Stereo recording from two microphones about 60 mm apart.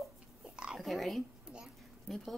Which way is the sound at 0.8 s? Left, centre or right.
Centre.